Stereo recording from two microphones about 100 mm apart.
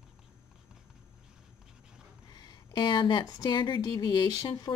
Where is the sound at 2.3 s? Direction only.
40° left (ahead or behind).